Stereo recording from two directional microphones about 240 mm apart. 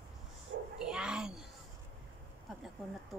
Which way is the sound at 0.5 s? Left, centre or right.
Right.